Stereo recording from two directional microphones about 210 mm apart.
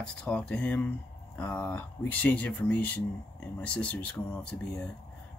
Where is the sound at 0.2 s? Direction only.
5° left (ahead or behind).